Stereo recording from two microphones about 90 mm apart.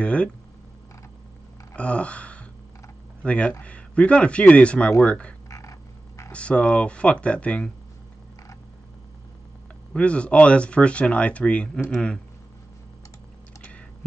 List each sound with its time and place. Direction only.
0.0 s speech: 15° left (ahead or behind)
1.7 s gasp: 15° left (ahead or behind)
3.2 s speech: 15° left (ahead or behind)
5.5 s frog: 35° left (ahead or behind)
6.3 s speech: 15° left (ahead or behind)
9.9 s speech: 15° left (ahead or behind)
13.6 s computer keyboard: 15° left (ahead or behind)